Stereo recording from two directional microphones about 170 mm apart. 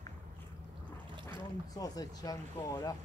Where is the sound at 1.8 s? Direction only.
20° left (ahead or behind).